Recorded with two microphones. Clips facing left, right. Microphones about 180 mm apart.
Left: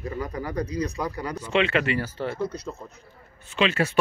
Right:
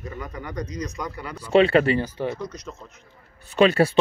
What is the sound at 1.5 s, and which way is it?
Speech, 35° right (ahead or behind).